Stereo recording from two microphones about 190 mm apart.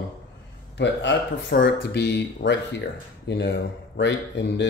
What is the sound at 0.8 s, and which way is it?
Speech, 65° left (ahead or behind).